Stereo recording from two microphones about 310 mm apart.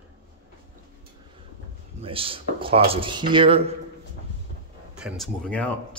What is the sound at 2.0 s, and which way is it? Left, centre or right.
Speech, centre.